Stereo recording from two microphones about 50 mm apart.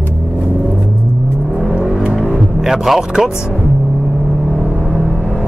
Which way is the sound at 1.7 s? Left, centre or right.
Centre.